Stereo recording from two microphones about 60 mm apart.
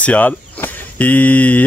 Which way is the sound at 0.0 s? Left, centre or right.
Left.